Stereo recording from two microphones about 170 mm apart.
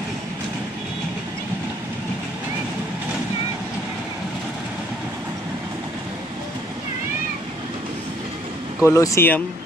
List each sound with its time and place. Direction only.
8.8 s speech: 20° left (ahead or behind)